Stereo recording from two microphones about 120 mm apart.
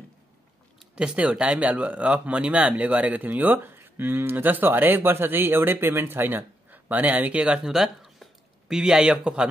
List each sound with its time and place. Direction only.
0.7 s speech: 10° right (ahead or behind)